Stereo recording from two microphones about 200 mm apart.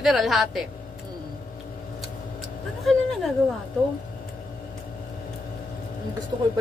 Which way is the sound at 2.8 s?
Centre (ahead or behind).